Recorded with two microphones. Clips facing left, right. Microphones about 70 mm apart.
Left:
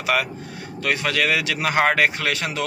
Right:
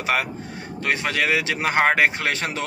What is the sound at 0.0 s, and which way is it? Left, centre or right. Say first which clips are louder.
Speech: left 1 dB; right.